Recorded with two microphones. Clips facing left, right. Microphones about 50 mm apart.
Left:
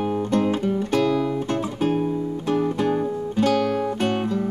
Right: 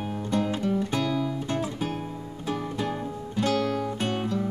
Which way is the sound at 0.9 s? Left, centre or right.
Left.